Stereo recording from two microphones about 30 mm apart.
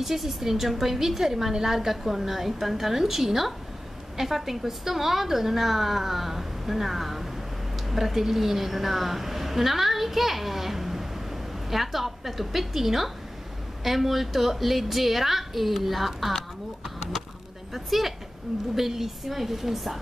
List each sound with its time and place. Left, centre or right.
0.0 s a woman's voice: centre
17.7 s a woman's voice: centre